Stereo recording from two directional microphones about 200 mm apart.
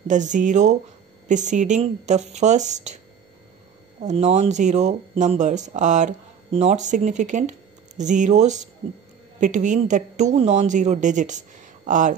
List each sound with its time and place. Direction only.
0.1 s speech: 40° right (ahead or behind)
4.0 s speech: 35° right (ahead or behind)